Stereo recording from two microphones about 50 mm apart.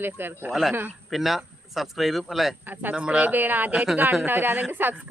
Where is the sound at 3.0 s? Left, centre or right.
Right.